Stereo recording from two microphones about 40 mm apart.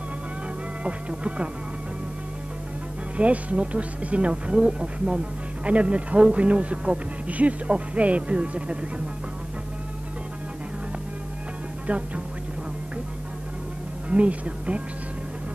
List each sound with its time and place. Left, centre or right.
0.8 s speech: right
3.2 s speech: right
11.9 s speech: right
14.0 s speech: right